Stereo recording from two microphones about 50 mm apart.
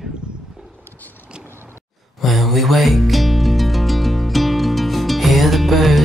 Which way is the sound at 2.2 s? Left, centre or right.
Centre.